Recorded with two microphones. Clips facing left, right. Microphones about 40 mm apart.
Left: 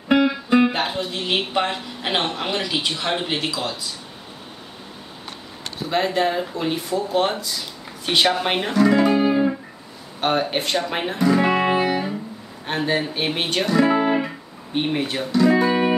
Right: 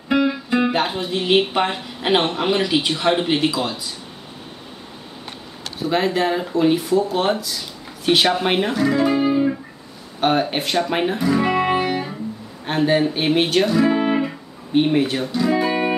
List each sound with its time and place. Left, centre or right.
0.1 s speech: centre
5.8 s speech: centre
9.2 s music: centre
10.2 s speech: centre